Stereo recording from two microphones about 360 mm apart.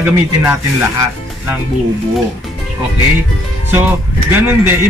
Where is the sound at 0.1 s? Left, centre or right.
Centre.